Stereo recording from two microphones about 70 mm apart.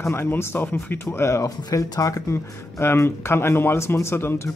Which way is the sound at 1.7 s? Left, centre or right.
Left.